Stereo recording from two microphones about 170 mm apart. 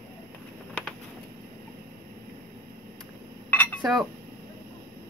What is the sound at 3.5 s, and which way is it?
Telephone dialing, 10° left (ahead or behind).